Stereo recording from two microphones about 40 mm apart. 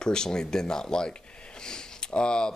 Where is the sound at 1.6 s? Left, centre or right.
Left.